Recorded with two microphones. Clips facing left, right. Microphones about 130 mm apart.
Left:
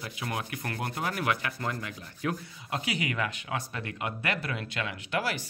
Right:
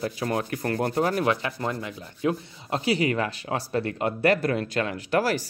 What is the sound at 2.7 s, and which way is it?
Speech, 35° right (ahead or behind).